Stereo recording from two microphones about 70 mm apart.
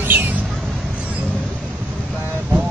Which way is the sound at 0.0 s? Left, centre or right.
Right.